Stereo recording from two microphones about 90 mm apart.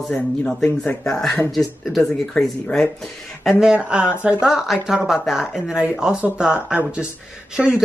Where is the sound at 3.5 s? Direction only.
10° right (ahead or behind).